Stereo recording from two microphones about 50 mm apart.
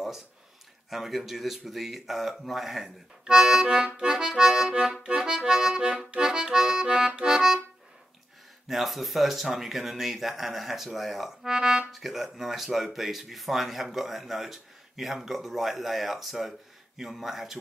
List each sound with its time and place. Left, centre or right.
0.8 s speech: centre
3.3 s accordion: centre
8.6 s speech: centre
11.5 s accordion: centre
11.9 s speech: centre